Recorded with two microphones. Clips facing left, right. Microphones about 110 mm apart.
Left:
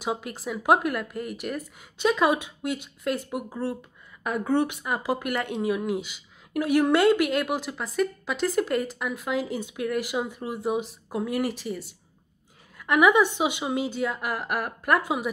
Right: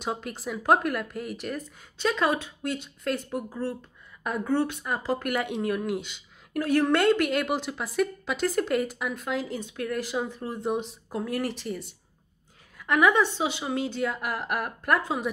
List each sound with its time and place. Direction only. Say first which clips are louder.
0.0 s speech: left 2 dB; 5° left (ahead or behind)
5.3 s a woman's voice: left 1 dB; centre (ahead or behind)